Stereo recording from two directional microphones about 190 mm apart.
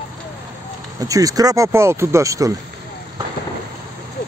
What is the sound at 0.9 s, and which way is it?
Speech, 20° right (ahead or behind).